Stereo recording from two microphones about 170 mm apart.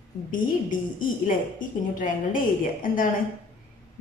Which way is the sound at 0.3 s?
50° left (ahead or behind).